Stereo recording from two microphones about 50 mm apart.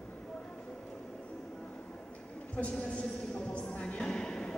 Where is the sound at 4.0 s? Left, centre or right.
Centre.